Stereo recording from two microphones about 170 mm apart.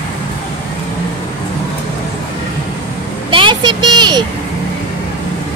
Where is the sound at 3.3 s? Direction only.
30° right (ahead or behind).